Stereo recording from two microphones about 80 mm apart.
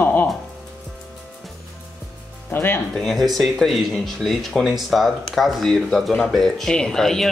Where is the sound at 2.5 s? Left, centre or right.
Left.